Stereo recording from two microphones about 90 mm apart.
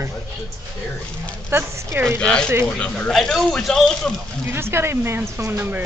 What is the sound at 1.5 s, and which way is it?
Speech, 25° right (ahead or behind).